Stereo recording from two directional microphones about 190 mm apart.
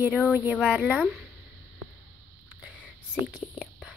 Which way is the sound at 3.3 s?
5° right (ahead or behind).